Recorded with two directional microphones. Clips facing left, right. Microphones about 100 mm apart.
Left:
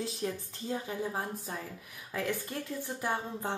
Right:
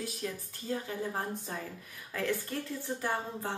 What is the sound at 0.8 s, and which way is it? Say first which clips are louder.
Speech: even; 10° left (ahead or behind).